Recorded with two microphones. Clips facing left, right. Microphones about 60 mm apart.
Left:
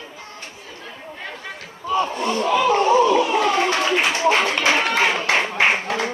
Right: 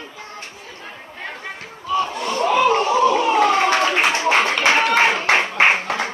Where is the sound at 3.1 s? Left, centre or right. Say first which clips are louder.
Right 2 dB; right.